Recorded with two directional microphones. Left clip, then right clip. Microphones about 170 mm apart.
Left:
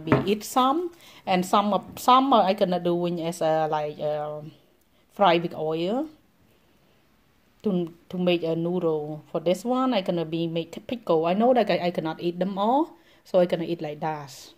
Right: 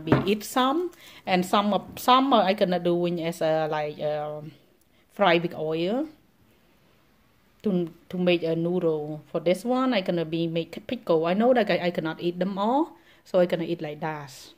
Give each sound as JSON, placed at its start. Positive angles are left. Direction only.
{"t": 0.0, "sound": "speech", "side_deg": 5}
{"t": 7.6, "sound": "speech", "side_deg": 0}